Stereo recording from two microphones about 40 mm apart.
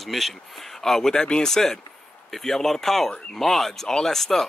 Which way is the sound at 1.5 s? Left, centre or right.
Centre.